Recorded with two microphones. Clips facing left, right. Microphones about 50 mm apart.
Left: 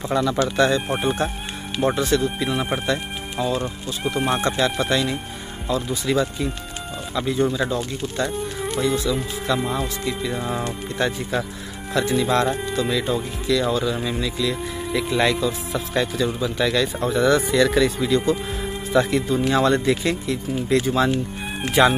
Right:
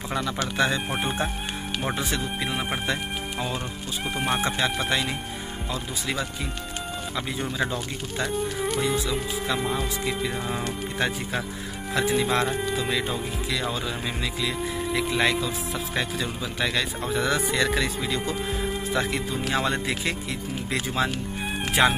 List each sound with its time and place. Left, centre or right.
0.1 s speech: centre
0.8 s speech: centre
2.0 s speech: centre
7.5 s speech: centre
9.6 s speech: centre
11.0 s speech: centre
14.6 s speech: centre
18.6 s music: centre
19.5 s speech: centre